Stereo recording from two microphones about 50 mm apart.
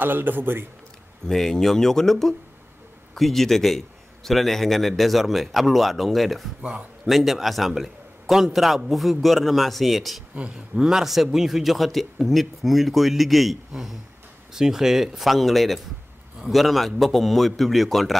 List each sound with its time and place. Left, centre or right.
0.0 s a man's voice: right
1.2 s a man's voice: centre
10.5 s a man's voice: centre